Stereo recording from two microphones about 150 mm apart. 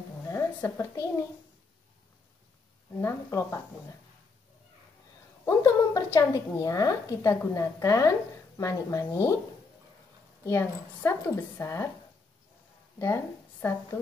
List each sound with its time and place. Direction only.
0.3 s a woman's voice: 15° left (ahead or behind)
3.0 s a woman's voice: 15° left (ahead or behind)
5.4 s a woman's voice: 15° left (ahead or behind)
10.4 s a woman's voice: 15° left (ahead or behind)
13.0 s a woman's voice: 15° left (ahead or behind)